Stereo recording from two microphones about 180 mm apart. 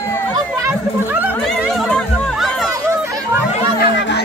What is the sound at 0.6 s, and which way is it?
Chatter, 10° right (ahead or behind).